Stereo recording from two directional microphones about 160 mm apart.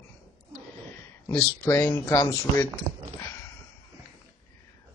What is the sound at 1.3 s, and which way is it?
Speech, 20° left (ahead or behind).